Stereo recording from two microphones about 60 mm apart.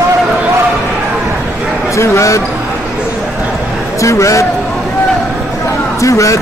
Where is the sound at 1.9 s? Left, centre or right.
Left.